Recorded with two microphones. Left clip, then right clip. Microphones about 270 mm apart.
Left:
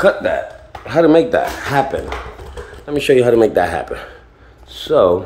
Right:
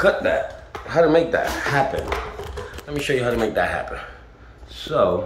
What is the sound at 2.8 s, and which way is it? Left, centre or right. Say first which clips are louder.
A man's voice: left 10 dB; left.